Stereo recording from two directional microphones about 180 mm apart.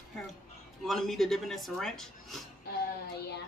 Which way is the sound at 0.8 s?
Centre (ahead or behind).